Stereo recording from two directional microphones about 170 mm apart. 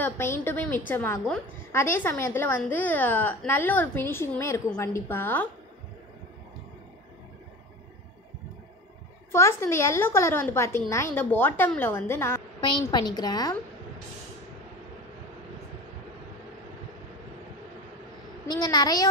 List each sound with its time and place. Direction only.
0.0 s a woman's voice: 15° left (ahead or behind)
9.3 s a woman's voice: 15° left (ahead or behind)
12.6 s a woman's voice: 25° left (ahead or behind)
18.5 s a woman's voice: 25° left (ahead or behind)